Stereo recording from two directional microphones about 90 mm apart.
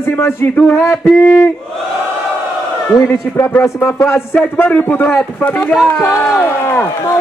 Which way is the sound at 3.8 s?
30° left (ahead or behind).